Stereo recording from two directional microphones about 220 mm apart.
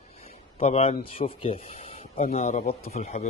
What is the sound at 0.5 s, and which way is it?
A man's voice, 25° left (ahead or behind).